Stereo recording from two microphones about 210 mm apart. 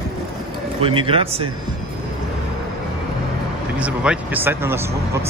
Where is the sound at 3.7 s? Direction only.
5° right (ahead or behind).